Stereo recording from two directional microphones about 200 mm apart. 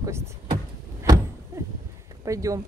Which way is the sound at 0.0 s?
15° right (ahead or behind).